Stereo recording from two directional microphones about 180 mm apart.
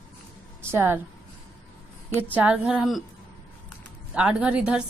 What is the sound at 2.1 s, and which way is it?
Speech, 10° right (ahead or behind).